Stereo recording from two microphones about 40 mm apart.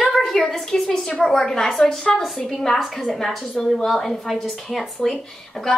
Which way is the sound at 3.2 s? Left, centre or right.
Centre.